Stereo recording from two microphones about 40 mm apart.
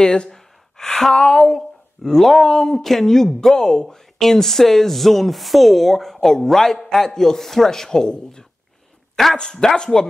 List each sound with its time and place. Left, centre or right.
0.0 s speech: left
0.3 s a sound: centre
2.0 s speech: centre
9.1 s speech: centre
9.4 s speech: centre